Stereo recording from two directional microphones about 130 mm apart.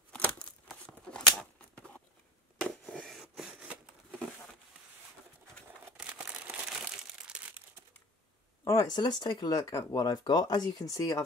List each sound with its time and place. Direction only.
0.1 s tearing: 10° left (ahead or behind)
2.6 s a sound: 5° left (ahead or behind)
5.9 s crumpling: 10° right (ahead or behind)
8.6 s speech: 30° left (ahead or behind)